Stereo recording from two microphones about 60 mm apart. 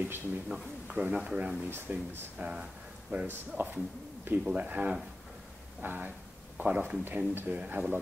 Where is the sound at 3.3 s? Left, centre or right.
Right.